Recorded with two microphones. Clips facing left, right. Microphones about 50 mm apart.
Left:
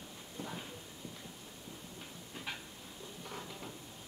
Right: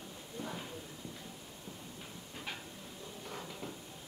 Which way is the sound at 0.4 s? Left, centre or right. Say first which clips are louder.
Right 1 dB; centre.